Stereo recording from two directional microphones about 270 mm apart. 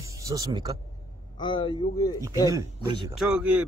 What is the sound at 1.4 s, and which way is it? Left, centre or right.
Speech, centre.